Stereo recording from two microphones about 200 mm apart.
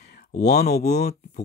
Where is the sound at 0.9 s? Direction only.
35° left (ahead or behind).